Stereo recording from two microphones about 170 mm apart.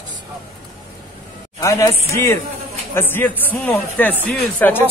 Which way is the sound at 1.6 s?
20° left (ahead or behind).